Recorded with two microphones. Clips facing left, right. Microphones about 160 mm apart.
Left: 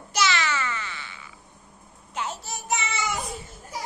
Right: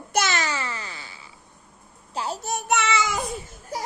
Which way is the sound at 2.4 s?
60° right (ahead or behind).